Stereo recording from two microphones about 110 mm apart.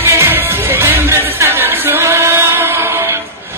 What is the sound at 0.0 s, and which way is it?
Music, 20° right (ahead or behind).